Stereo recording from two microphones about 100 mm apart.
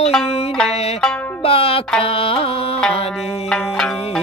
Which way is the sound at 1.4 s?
75° left (ahead or behind).